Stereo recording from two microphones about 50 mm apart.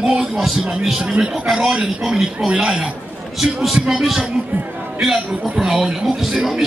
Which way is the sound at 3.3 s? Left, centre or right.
Centre.